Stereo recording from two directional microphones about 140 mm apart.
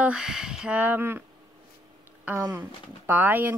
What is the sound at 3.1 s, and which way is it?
Speech, 15° right (ahead or behind).